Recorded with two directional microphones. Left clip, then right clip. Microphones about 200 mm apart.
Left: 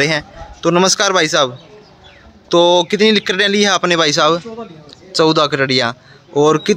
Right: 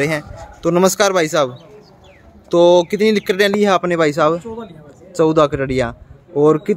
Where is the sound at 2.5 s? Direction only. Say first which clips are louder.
Even; centre (ahead or behind).